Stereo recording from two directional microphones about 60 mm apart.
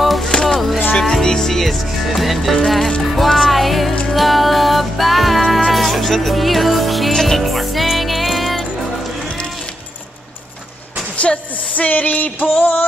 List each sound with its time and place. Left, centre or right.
0.0 s music: centre
0.3 s music: centre
11.1 s music: left